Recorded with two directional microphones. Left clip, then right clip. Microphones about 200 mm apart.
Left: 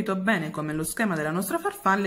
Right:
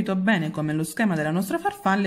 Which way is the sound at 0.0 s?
20° right (ahead or behind).